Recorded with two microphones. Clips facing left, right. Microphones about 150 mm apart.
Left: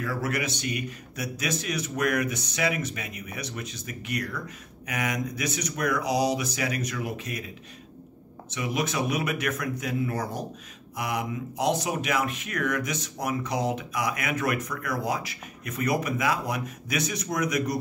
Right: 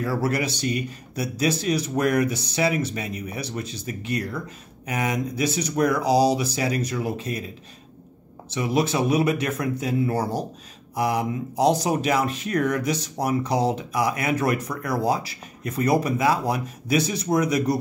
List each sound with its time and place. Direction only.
0.0 s speech: 35° right (ahead or behind)
8.5 s speech: 30° right (ahead or behind)